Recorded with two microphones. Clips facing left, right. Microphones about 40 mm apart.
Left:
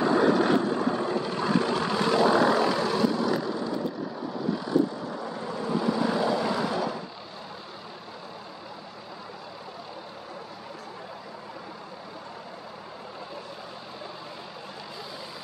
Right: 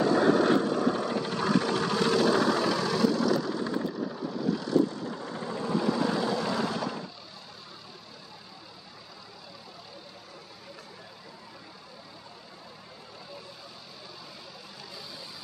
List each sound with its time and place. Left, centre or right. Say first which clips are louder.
0.2 s vehicle: left 1 dB; left